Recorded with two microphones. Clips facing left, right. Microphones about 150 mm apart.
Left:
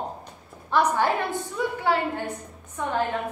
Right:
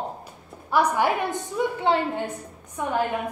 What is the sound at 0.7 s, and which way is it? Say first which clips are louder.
A woman's voice: right 1 dB; 10° right (ahead or behind).